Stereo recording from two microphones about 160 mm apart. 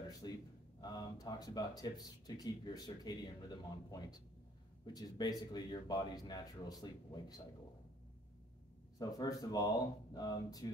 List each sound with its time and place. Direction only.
0.2 s speech: 30° left (ahead or behind)
8.9 s speech: 25° left (ahead or behind)